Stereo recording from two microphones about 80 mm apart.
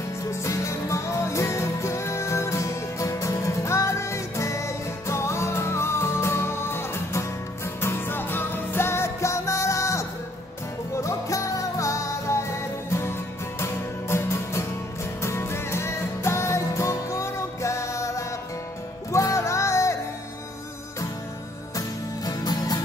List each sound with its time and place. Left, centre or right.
0.3 s music: left
21.7 s music: left